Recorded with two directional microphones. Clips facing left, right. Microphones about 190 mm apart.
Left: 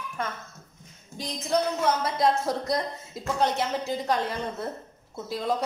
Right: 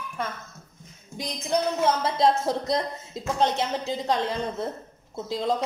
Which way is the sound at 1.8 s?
25° right (ahead or behind).